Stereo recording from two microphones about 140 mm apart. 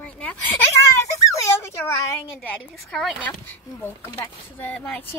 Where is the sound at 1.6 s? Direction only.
20° left (ahead or behind).